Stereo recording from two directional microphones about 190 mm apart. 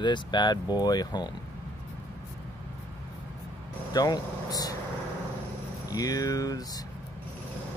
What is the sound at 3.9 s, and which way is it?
Speech, 20° left (ahead or behind).